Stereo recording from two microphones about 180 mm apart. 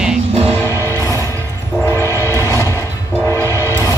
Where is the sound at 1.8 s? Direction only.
15° left (ahead or behind).